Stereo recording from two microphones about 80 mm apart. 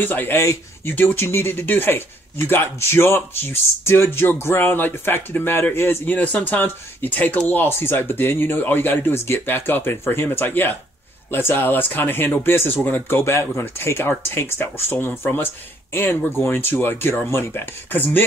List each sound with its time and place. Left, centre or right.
0.0 s speech: left